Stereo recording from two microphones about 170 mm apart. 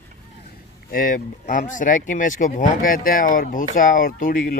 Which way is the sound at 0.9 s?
55° left (ahead or behind).